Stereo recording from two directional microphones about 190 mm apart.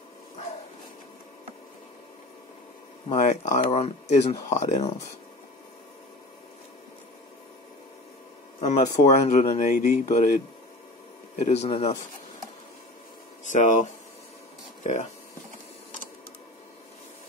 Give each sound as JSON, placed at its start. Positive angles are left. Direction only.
{"t": 3.1, "sound": "speech", "side_deg": 35}
{"t": 8.5, "sound": "speech", "side_deg": 35}
{"t": 13.5, "sound": "speech", "side_deg": 40}